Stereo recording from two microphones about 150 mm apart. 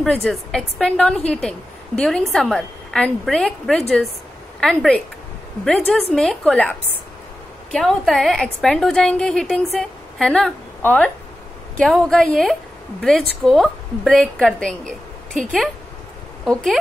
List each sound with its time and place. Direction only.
0.0 s a woman's voice: centre (ahead or behind)